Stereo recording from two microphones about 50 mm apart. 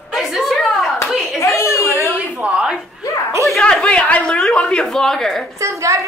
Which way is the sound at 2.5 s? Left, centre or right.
Centre.